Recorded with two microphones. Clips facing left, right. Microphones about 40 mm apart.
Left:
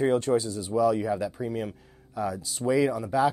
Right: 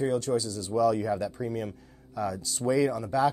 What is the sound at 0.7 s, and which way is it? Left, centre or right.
Speech, centre.